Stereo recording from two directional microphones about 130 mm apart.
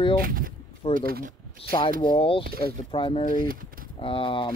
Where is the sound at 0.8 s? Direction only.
50° left (ahead or behind).